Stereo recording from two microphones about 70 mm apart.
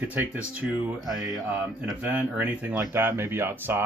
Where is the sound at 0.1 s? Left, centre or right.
Right.